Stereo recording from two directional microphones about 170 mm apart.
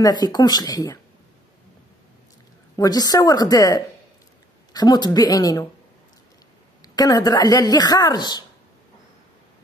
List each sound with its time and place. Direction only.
0.0 s a woman's voice: 25° left (ahead or behind)
2.7 s a woman's voice: 20° left (ahead or behind)
7.0 s a woman's voice: 20° left (ahead or behind)